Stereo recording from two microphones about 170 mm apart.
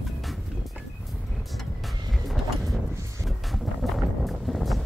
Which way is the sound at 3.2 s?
Centre (ahead or behind).